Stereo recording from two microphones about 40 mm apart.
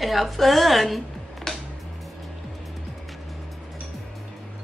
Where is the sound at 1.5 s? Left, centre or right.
Centre.